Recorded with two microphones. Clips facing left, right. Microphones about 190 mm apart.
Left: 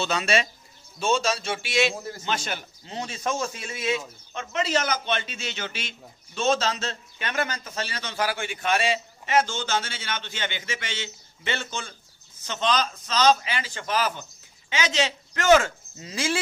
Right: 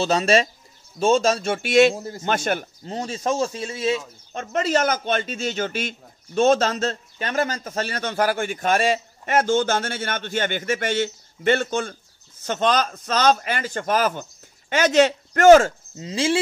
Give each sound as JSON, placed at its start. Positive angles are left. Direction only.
{"t": 0.0, "sound": "speech", "side_deg": -40}
{"t": 16.0, "sound": "speech", "side_deg": -25}